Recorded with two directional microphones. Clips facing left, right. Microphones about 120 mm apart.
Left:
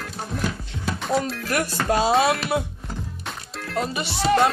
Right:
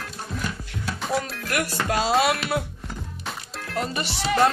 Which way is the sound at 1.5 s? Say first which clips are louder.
Left 2 dB; 25° left (ahead or behind).